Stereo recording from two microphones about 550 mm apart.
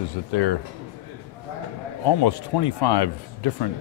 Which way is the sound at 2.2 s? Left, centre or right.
Left.